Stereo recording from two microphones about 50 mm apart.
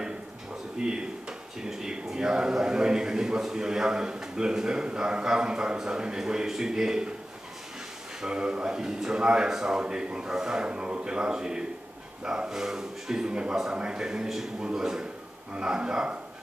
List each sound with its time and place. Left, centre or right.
0.7 s a man's voice: centre
8.2 s a man's voice: centre